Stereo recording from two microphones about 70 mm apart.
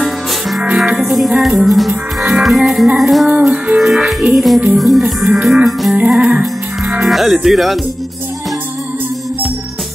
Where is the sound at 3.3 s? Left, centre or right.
Centre.